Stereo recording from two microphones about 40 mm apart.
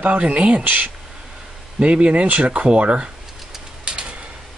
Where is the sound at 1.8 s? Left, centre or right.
Right.